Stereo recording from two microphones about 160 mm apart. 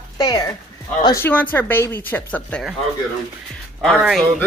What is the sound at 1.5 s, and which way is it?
Speech, 10° left (ahead or behind).